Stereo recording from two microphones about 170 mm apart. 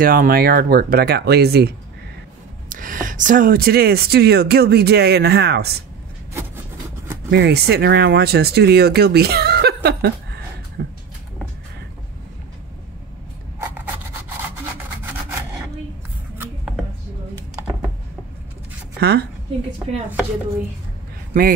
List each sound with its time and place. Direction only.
0.0 s speech: 55° right (ahead or behind)
2.7 s speech: 55° right (ahead or behind); by 5.8 s 70° right (ahead or behind)
7.2 s speech: 80° right
10.8 s a sound: 65° right (ahead or behind)
16.3 s a sound: centre (ahead or behind)
18.9 s a woman's voice: 75° right (ahead or behind)
21.3 s speech: 55° right (ahead or behind)